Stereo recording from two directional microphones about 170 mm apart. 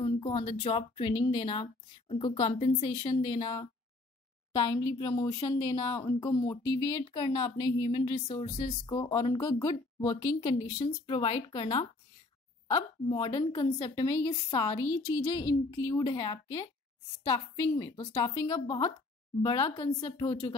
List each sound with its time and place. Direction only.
0.0 s a woman's voice: 30° left (ahead or behind)
3.3 s a woman's voice: 20° left (ahead or behind)
11.1 s a woman's voice: 35° left (ahead or behind)